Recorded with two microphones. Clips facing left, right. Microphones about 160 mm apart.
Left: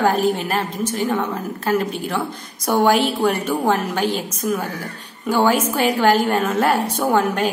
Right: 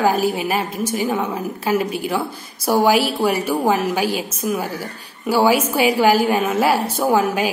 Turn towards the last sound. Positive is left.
turn(degrees=-5)  # may be behind; listen again after turning